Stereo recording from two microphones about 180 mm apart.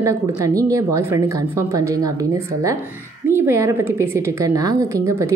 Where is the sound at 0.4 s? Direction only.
20° right (ahead or behind).